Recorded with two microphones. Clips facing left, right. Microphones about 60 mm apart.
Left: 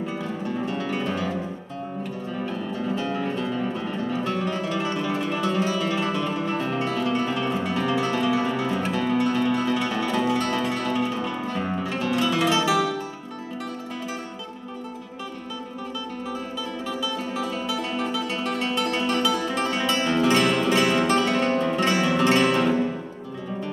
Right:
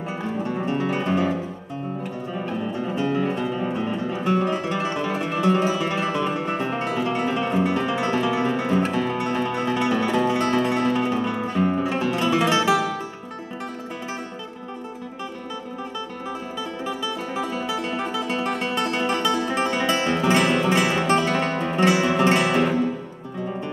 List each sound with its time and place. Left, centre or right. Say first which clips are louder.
0.2 s music: right 2 dB; right
2.3 s music: right 2 dB; centre
16.8 s music: right 1 dB; centre